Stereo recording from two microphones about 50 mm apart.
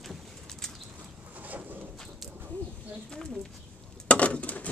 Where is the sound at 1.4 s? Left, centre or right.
Right.